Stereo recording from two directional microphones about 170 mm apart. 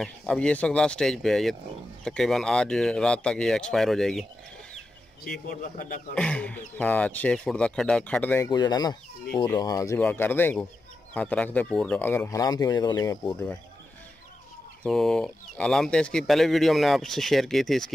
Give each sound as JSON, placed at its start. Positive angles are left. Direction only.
{"t": 0.0, "sound": "speech", "side_deg": 5}
{"t": 5.5, "sound": "a man's voice", "side_deg": 50}
{"t": 6.1, "sound": "speech", "side_deg": 5}
{"t": 8.5, "sound": "speech", "side_deg": 25}
{"t": 14.8, "sound": "speech", "side_deg": 5}